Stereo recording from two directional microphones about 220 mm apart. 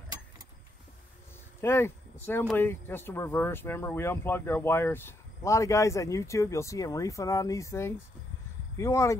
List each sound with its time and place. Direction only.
1.6 s speech: 10° left (ahead or behind)